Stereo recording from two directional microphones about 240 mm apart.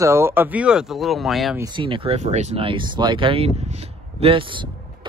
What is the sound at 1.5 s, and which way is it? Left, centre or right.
Speech, centre.